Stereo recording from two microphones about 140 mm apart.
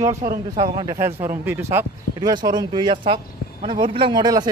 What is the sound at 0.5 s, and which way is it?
Speech, 45° right (ahead or behind).